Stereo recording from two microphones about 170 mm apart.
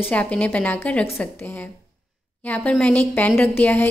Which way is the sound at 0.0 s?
10° left (ahead or behind).